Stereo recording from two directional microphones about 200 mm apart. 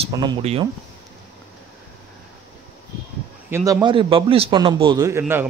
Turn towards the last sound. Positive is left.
turn(degrees=-10)  # may be behind; listen again after turning